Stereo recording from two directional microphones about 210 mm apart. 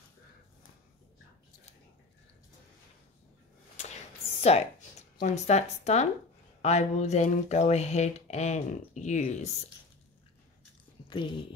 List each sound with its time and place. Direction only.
3.8 s a sound: 30° left (ahead or behind)
4.4 s speech: 30° left (ahead or behind)
11.1 s speech: 20° left (ahead or behind)